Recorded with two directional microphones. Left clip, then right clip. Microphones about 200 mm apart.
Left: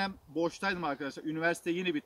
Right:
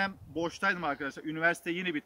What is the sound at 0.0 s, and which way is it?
Speech, 10° right (ahead or behind).